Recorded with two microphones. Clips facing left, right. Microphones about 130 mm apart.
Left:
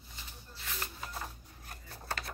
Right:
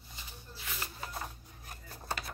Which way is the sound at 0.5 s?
5° right (ahead or behind).